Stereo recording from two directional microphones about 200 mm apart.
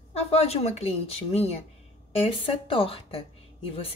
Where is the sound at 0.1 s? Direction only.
30° left (ahead or behind).